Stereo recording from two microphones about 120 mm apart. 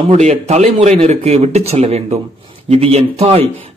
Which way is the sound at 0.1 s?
70° right (ahead or behind).